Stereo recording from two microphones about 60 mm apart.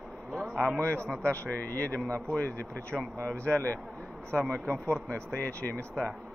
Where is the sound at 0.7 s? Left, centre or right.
Left.